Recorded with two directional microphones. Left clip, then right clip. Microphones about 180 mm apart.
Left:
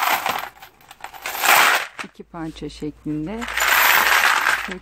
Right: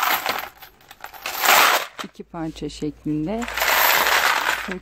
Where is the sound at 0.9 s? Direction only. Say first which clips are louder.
Left 1 dB; 5° left (ahead or behind).